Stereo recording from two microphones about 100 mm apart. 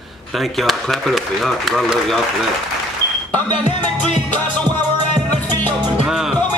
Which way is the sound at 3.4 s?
15° left (ahead or behind).